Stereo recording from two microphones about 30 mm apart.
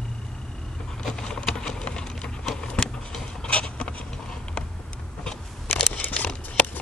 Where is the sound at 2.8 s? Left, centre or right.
Left.